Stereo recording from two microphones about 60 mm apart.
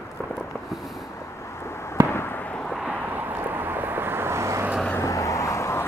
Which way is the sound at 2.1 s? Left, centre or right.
Left.